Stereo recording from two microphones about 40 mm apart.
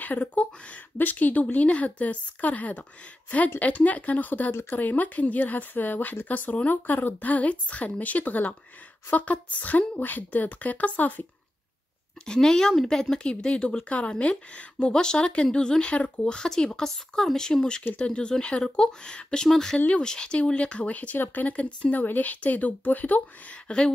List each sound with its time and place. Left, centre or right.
0.0 s a woman's voice: left
0.9 s a woman's voice: left
12.3 s a woman's voice: centre; by 14.9 s left
14.9 s speech: centre
16.4 s speech: centre
20.5 s a woman's voice: left
21.9 s speech: left
23.5 s speech: left